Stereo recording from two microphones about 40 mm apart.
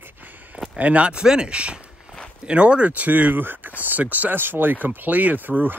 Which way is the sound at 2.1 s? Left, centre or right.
Right.